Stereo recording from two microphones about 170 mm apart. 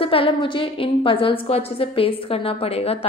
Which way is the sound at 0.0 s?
30° left (ahead or behind).